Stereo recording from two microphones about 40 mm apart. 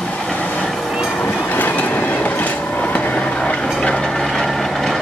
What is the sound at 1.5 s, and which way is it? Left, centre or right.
Train, left.